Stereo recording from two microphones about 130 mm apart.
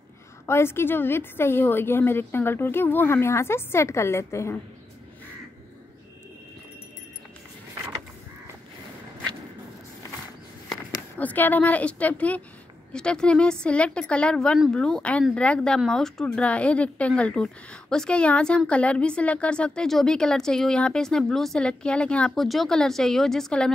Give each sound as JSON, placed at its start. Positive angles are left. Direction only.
{"t": 0.5, "sound": "a woman's voice", "side_deg": 20}
{"t": 11.1, "sound": "a woman's voice", "side_deg": 15}